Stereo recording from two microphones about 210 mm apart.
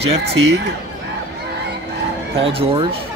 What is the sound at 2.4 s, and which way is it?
Speech, 25° right (ahead or behind).